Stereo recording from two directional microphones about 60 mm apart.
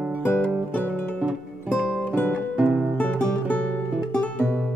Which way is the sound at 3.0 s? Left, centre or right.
Left.